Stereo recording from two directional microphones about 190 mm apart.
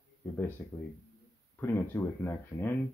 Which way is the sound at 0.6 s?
10° left (ahead or behind).